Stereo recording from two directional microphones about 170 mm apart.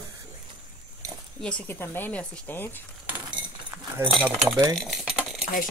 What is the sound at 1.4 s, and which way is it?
Speech, 10° left (ahead or behind).